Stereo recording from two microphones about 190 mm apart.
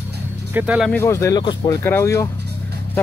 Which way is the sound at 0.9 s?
15° left (ahead or behind).